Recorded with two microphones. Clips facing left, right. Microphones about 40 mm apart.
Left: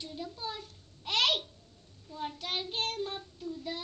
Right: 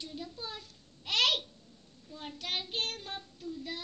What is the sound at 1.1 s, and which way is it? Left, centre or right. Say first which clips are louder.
Babbling: even; left.